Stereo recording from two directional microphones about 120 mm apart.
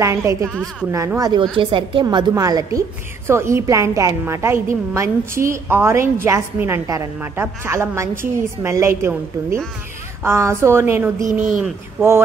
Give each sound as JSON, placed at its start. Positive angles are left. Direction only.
{"t": 0.0, "sound": "a woman's voice", "side_deg": -25}
{"t": 1.6, "sound": "a woman's voice", "side_deg": -45}
{"t": 2.0, "sound": "a woman's voice", "side_deg": -30}